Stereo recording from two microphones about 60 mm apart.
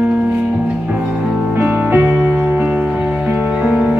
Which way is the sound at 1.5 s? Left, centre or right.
Right.